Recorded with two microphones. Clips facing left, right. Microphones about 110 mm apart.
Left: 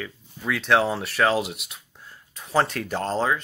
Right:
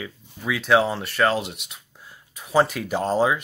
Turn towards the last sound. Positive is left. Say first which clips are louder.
# right 3 dB
turn(degrees=-10)  # may be behind; listen again after turning